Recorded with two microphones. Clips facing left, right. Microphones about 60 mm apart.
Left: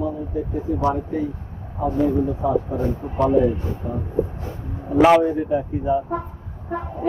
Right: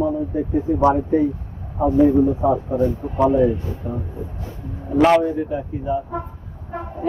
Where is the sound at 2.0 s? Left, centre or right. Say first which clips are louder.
Right 5 dB; centre.